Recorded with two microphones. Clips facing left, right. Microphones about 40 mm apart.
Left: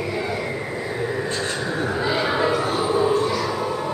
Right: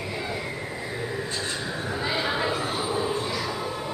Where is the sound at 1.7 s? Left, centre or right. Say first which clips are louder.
Left 6 dB; left.